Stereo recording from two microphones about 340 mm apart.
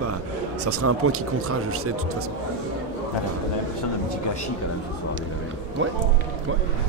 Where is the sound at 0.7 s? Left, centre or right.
Right.